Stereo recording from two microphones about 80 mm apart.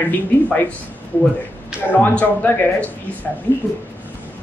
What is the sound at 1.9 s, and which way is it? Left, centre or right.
Speech, left.